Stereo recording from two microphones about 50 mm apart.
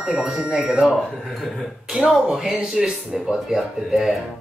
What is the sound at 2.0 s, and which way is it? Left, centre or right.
Speech, right.